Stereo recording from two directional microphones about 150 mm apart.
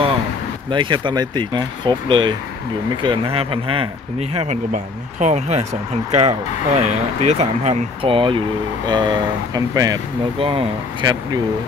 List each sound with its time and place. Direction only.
0.7 s speech: 30° right (ahead or behind)
4.4 s speech: 50° right (ahead or behind); by 9.9 s 25° right (ahead or behind)
10.4 s speech: 35° right (ahead or behind)